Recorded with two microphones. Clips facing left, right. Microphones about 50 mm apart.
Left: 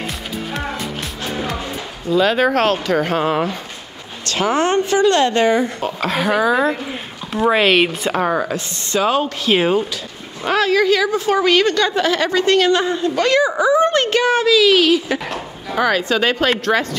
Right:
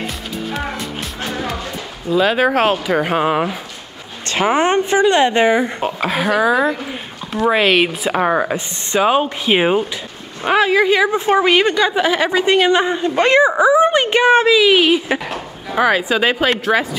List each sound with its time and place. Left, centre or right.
1.3 s music: centre
2.0 s speech: centre
4.3 s a woman's voice: right
6.0 s a woman's voice: centre
8.2 s a woman's voice: centre
15.1 s speech: centre